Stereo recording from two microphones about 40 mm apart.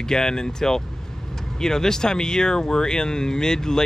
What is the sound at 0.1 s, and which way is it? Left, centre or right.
Speech, centre.